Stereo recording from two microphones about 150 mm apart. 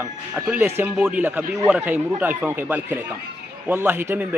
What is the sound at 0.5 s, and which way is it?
A man's voice, 15° right (ahead or behind).